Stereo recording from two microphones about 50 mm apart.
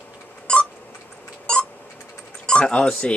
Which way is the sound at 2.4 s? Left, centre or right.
Centre.